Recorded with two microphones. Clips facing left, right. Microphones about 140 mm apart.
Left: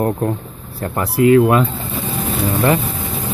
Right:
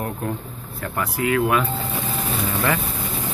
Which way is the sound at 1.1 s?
35° left (ahead or behind).